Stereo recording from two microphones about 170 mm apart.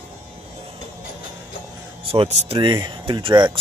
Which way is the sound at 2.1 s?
35° right (ahead or behind).